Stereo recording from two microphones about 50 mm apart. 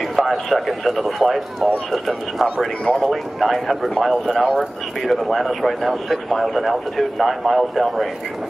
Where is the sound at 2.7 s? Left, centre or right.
Left.